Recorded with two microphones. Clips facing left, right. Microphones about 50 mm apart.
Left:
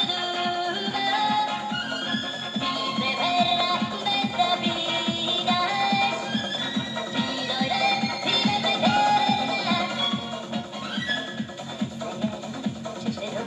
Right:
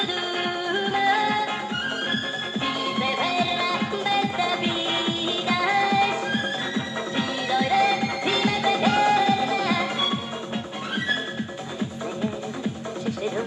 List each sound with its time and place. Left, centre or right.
0.4 s music: right
2.6 s music: right